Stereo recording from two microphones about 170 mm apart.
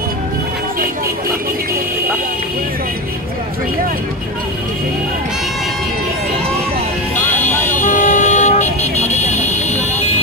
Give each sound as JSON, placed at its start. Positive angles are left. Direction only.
{"t": 7.7, "sound": "vehicle", "side_deg": 50}